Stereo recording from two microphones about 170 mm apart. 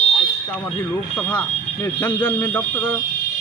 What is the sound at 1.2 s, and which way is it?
Speech, 10° left (ahead or behind).